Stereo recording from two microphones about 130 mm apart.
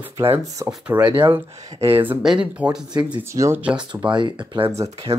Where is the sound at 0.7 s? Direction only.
10° right (ahead or behind).